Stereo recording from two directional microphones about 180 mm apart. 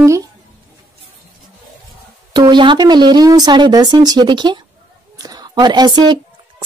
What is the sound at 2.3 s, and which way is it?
A woman's voice, 25° right (ahead or behind).